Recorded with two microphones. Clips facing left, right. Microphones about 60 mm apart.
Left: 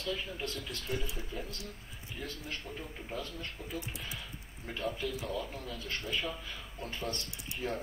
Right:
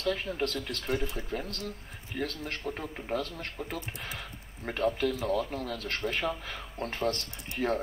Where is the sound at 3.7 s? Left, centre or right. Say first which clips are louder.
Right 3 dB; right.